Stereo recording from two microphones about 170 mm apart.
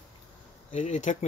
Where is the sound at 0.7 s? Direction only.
45° left (ahead or behind).